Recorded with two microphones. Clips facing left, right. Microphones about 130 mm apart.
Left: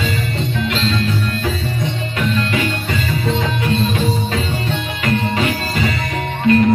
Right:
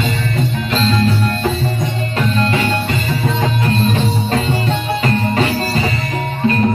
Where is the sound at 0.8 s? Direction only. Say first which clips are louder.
Right 4 dB; 40° right (ahead or behind).